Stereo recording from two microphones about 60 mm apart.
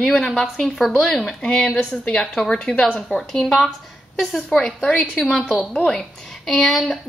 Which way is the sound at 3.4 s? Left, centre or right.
Centre.